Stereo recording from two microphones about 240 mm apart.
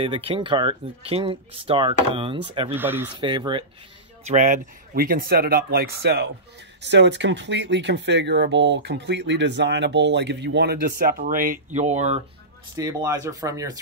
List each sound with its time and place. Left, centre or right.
0.0 s speech: right
2.7 s speech: centre
3.2 s speech: centre
4.2 s speech: right
12.7 s speech: centre